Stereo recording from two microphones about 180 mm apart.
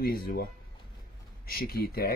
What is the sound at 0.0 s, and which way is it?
Speech, 55° left (ahead or behind).